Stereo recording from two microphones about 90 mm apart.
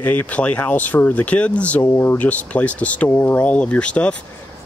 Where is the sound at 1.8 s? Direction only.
25° left (ahead or behind).